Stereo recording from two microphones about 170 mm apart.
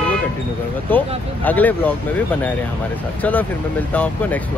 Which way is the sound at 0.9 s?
10° left (ahead or behind).